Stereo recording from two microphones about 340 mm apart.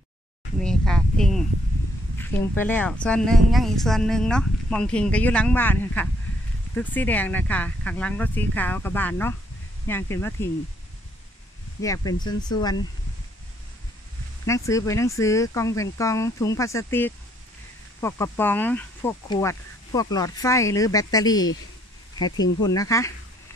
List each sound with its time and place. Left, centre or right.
0.6 s speech: centre
11.8 s speech: centre
14.4 s speech: centre
22.7 s speech: centre